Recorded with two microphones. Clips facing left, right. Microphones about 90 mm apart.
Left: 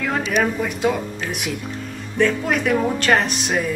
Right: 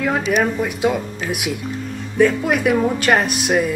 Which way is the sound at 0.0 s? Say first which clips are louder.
Right 2 dB; 5° right (ahead or behind).